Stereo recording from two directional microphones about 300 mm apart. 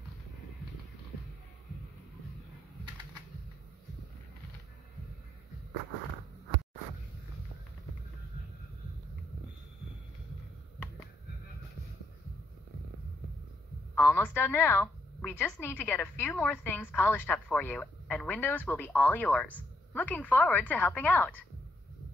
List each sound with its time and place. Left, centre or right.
13.9 s a woman's voice: centre